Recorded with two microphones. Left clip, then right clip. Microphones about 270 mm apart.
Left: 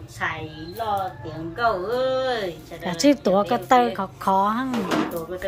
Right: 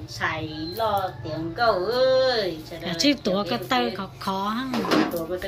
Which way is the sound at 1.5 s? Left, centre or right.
Centre.